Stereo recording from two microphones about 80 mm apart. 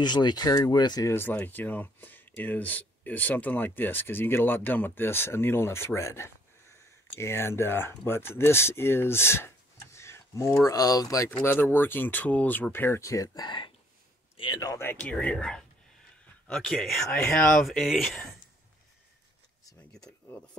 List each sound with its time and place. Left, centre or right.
0.0 s speech: left
1.0 s speech: left
9.9 s a sound: left
10.6 s speech: left
11.2 s speech: left
13.0 s speech: left
13.3 s speech: left
14.4 s speech: left
15.0 s speech: centre
19.9 s a sound: centre